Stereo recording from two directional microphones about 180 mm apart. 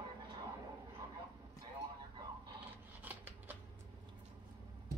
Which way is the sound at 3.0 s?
10° right (ahead or behind).